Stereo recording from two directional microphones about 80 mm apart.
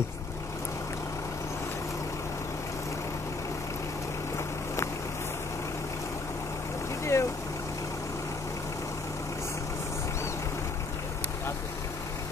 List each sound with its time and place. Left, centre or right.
7.1 s vehicle: left